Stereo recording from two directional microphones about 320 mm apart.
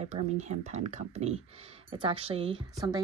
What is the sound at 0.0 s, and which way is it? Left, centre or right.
Speech, right.